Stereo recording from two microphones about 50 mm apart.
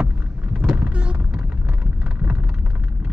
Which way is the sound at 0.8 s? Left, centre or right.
Right.